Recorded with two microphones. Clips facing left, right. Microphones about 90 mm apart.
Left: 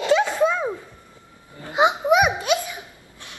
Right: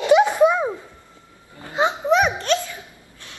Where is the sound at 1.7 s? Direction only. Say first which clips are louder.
Left 1 dB; 15° left (ahead or behind).